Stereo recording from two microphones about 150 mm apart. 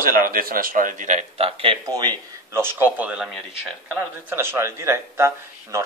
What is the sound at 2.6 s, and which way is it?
Speech, 15° right (ahead or behind).